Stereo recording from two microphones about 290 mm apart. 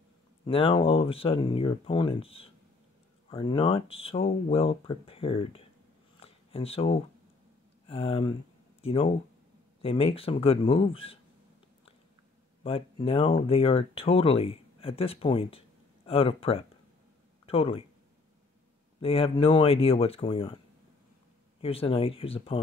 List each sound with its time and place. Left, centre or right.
0.5 s speech: centre
6.1 s a sound: centre
7.9 s speech: centre
12.6 s speech: centre
18.9 s speech: centre